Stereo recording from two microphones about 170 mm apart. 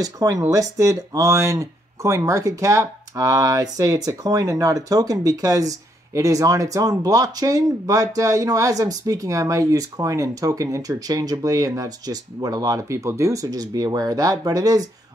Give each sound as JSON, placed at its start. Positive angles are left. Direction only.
{"t": 0.0, "sound": "speech", "side_deg": -20}